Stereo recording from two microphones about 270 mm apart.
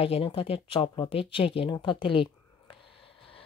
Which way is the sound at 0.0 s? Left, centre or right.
Left.